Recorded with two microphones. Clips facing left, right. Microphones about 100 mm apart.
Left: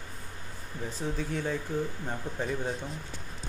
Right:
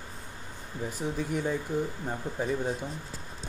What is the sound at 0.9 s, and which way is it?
Speech, 15° right (ahead or behind).